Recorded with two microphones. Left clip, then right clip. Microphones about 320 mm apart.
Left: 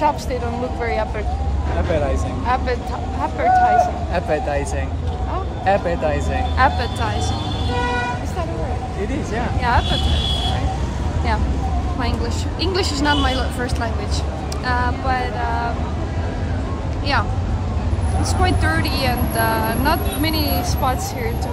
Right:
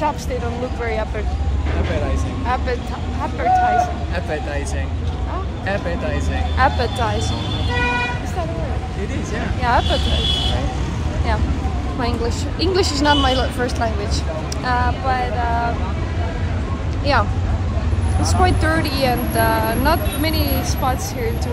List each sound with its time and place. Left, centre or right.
2.4 s speech: centre
3.7 s a man's voice: left
5.7 s a man's voice: left
6.6 s a woman's voice: centre
9.6 s speech: centre
12.0 s a woman's voice: centre
17.1 s a woman's voice: centre